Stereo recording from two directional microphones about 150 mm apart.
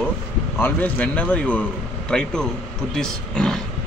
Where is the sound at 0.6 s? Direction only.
15° left (ahead or behind).